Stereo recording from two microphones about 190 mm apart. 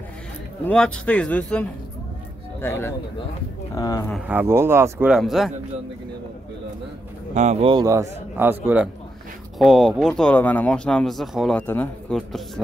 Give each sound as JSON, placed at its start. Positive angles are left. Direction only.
{"t": 0.7, "sound": "a man's voice", "side_deg": 5}
{"t": 4.3, "sound": "speech", "side_deg": -10}
{"t": 7.3, "sound": "speech", "side_deg": -40}
{"t": 7.7, "sound": "speech", "side_deg": -15}
{"t": 9.6, "sound": "speech", "side_deg": 0}